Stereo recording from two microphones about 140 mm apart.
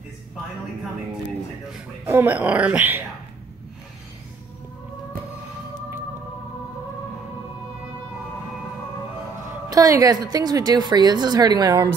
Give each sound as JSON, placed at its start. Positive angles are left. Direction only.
{"t": 2.0, "sound": "speech", "side_deg": -15}
{"t": 9.7, "sound": "a woman's voice", "side_deg": -25}